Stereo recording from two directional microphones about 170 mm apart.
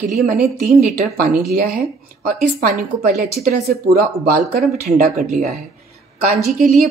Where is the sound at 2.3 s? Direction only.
55° right (ahead or behind).